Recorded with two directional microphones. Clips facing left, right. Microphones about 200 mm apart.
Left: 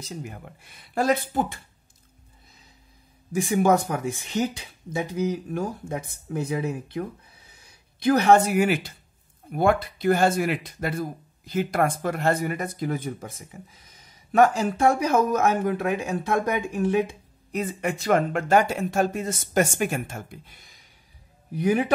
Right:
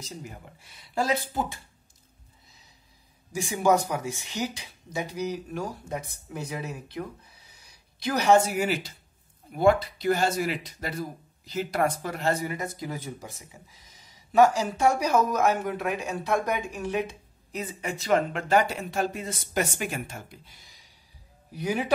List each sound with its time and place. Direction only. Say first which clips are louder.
0.0 s speech: left 4 dB; 55° left (ahead or behind)
3.3 s speech: left 3 dB; 55° left (ahead or behind)